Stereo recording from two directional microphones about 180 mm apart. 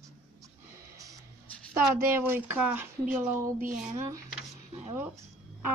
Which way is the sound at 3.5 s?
45° right (ahead or behind).